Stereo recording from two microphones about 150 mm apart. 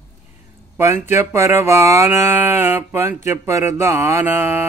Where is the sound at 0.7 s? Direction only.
15° right (ahead or behind).